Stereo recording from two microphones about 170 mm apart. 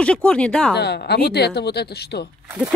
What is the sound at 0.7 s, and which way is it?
A woman's voice, 80° left.